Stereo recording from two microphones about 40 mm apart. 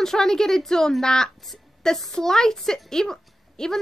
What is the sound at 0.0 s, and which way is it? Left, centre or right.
A woman's voice, centre.